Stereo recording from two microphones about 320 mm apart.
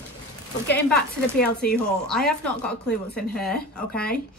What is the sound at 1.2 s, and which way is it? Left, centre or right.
Speech, centre.